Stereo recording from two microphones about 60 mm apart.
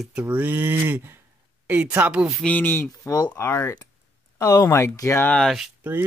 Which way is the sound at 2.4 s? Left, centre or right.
Left.